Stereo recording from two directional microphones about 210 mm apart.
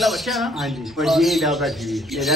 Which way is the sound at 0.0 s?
Centre (ahead or behind).